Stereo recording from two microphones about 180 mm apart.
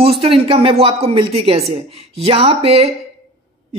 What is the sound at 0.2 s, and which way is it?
A woman's voice, 30° right (ahead or behind).